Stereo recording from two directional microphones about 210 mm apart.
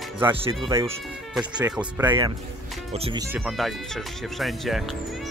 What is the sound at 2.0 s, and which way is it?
Speech, 20° right (ahead or behind).